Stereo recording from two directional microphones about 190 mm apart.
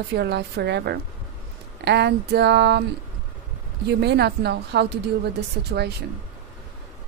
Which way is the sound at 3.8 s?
60° right (ahead or behind).